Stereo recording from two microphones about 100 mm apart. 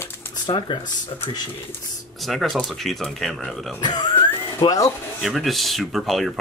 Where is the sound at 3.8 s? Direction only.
40° left (ahead or behind).